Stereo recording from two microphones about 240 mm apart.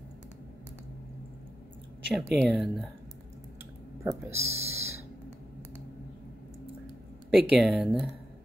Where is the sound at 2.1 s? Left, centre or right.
Centre.